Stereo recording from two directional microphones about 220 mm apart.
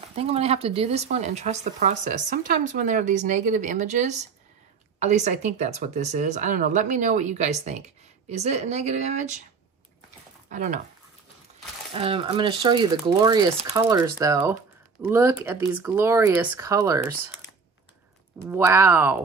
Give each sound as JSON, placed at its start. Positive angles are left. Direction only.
{"t": 0.1, "sound": "speech", "side_deg": -25}
{"t": 10.5, "sound": "speech", "side_deg": -35}
{"t": 11.9, "sound": "speech", "side_deg": -25}
{"t": 18.5, "sound": "speech", "side_deg": -10}